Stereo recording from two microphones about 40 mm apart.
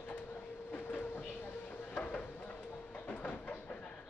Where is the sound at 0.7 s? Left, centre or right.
Left.